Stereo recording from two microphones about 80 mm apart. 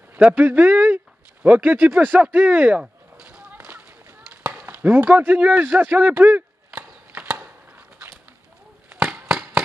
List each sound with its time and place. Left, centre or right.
0.2 s speech: right
2.8 s a sound: centre
8.8 s chop: centre
9.3 s firecracker: centre